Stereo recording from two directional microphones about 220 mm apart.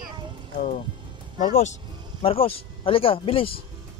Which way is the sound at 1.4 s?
35° left (ahead or behind).